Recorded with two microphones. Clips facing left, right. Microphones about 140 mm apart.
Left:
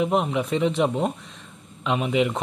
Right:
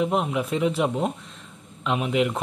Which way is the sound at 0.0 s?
Centre (ahead or behind).